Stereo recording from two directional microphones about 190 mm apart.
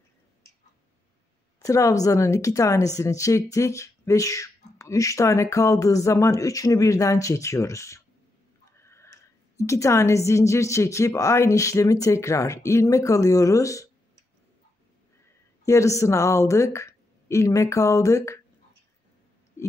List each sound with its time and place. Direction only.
1.6 s speech: 15° left (ahead or behind)
15.6 s speech: 15° left (ahead or behind)